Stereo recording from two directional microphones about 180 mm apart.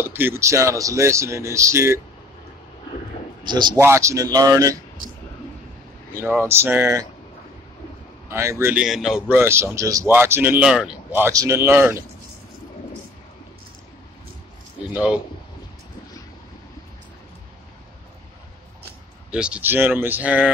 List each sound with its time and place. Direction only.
0.0 s speech: 15° right (ahead or behind)
3.5 s speech: 15° right (ahead or behind)
6.1 s speech: 15° right (ahead or behind)
8.3 s speech: 15° right (ahead or behind)
19.3 s speech: 5° right (ahead or behind)